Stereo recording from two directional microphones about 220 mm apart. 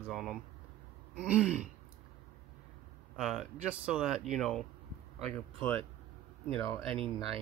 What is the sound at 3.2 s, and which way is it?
Speech, centre (ahead or behind).